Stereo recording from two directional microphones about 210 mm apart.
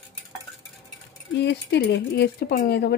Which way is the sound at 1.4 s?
55° left (ahead or behind).